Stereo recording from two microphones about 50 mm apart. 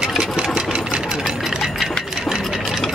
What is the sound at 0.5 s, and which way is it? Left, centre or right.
Engine, centre.